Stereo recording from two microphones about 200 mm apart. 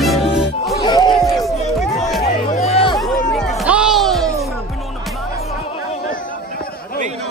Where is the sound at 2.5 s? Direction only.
30° left (ahead or behind).